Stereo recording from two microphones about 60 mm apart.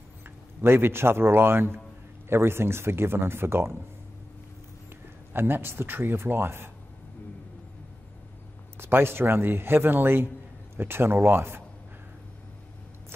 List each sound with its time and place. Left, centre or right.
0.6 s a man's voice: right
5.3 s a man's voice: right
8.7 s a man's voice: right